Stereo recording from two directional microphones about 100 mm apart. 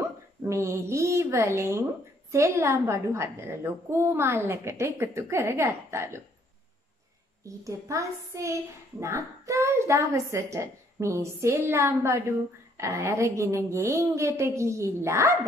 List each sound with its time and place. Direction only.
0.4 s a woman's voice: 30° right (ahead or behind)
7.4 s a woman's voice: 30° right (ahead or behind)